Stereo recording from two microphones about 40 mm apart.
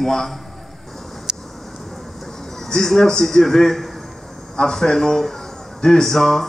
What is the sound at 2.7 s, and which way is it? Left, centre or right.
A man's voice, centre.